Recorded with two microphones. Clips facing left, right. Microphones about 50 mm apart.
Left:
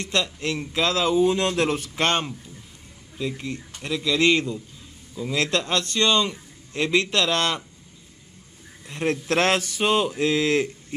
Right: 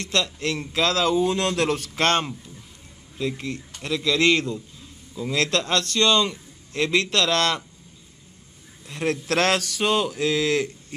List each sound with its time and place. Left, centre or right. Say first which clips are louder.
0.0 s speech: even; centre
8.8 s speech: left 1 dB; left